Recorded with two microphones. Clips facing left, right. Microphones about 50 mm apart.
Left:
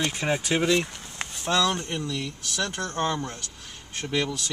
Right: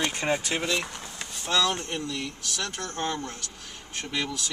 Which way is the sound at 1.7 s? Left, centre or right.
Centre.